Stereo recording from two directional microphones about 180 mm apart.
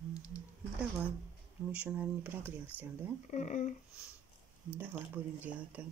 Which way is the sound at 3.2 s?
45° left (ahead or behind).